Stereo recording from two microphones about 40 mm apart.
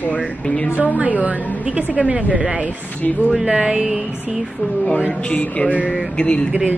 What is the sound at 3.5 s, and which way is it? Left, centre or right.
Speech, right.